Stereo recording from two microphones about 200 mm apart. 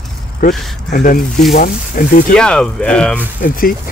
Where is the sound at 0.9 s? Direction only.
40° left (ahead or behind).